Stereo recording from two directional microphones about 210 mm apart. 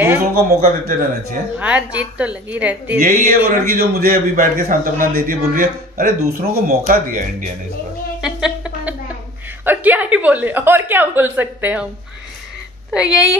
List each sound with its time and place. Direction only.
0.3 s a man's voice: 40° right (ahead or behind)
1.6 s a woman's voice: 5° right (ahead or behind)
3.0 s a man's voice: 40° right (ahead or behind)
8.2 s a sound: 5° right (ahead or behind)
9.7 s a woman's voice: 10° right (ahead or behind)
12.9 s speech: 5° right (ahead or behind)